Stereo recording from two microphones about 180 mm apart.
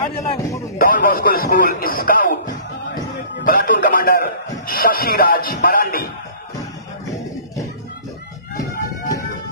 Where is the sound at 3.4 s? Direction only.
50° left (ahead or behind).